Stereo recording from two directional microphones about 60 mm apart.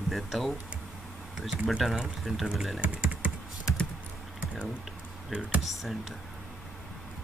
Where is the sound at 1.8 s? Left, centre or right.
Centre.